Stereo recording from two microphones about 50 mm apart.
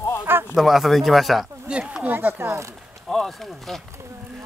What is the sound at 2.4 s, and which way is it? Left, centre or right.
Speech, right.